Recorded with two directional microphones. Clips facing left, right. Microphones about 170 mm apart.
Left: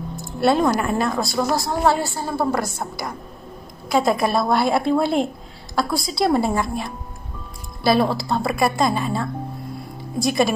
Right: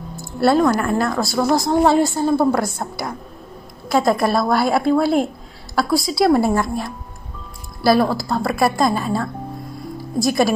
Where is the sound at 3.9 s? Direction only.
Centre (ahead or behind).